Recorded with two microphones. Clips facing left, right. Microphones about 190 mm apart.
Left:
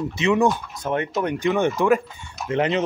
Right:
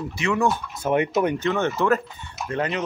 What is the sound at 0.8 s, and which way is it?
Speech, 10° right (ahead or behind).